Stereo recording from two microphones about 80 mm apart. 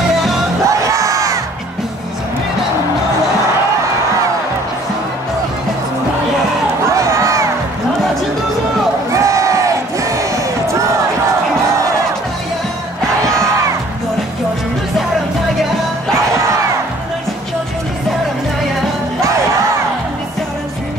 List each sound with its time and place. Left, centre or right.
0.7 s crowd: right
6.9 s crowd: right
9.1 s crowd: right